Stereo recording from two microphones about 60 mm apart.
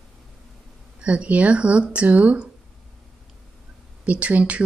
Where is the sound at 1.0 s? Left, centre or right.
Right.